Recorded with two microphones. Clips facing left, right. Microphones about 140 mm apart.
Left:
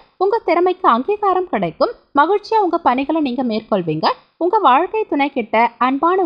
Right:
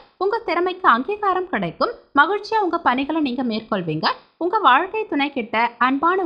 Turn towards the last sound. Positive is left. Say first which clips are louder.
# left 4 dB
turn(degrees=35)  # may be behind; listen again after turning